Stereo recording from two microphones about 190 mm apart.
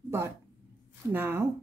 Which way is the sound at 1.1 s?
10° right (ahead or behind).